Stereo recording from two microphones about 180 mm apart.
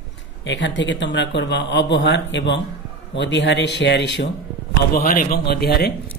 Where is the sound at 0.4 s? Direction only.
90° left; by 4.3 s 70° left (ahead or behind).